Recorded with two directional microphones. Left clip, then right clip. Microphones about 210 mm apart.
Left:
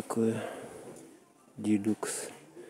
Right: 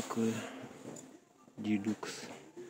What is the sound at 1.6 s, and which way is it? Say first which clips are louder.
Speech: left 6 dB; 45° left (ahead or behind).